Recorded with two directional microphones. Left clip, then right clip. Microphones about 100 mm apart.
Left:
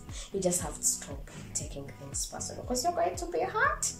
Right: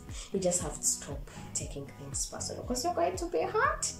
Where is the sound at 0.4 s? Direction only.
15° right (ahead or behind).